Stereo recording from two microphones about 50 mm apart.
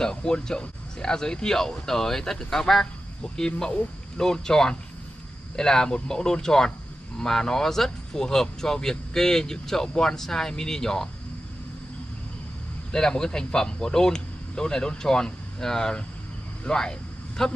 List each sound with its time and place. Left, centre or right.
0.0 s speech: centre
12.9 s speech: centre